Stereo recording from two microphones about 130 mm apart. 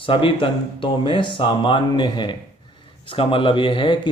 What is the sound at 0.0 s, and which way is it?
Speech, 45° left (ahead or behind).